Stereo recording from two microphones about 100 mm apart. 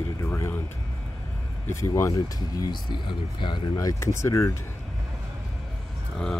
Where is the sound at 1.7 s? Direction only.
30° left (ahead or behind); by 3.7 s 50° left (ahead or behind).